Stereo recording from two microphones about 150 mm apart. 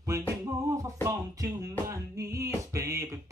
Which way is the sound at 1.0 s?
20° right (ahead or behind).